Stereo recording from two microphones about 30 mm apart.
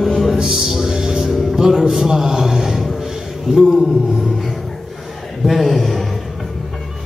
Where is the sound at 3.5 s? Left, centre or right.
Centre.